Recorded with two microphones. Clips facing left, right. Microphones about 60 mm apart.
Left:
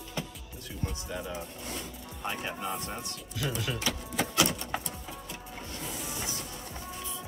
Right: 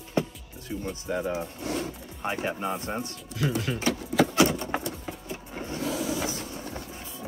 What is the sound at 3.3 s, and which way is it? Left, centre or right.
Speech, right.